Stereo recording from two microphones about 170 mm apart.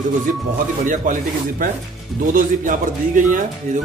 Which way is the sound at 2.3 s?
50° right (ahead or behind).